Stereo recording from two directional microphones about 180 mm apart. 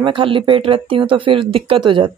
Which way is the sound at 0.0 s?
30° right (ahead or behind).